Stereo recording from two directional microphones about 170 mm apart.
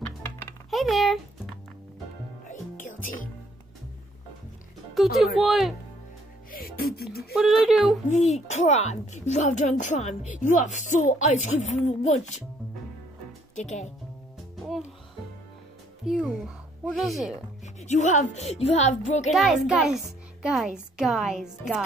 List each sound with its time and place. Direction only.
0.7 s music: centre (ahead or behind)
2.4 s music: 45° left (ahead or behind)
4.9 s speech: centre (ahead or behind)
6.5 s speech: 60° left (ahead or behind)
7.3 s speech: centre (ahead or behind)
8.1 s a woman's voice: 40° left (ahead or behind)
13.6 s a woman's voice: 45° left (ahead or behind)
16.1 s speech: 5° right (ahead or behind)
17.7 s a woman's voice: 45° left (ahead or behind)
19.3 s speech: 5° right (ahead or behind)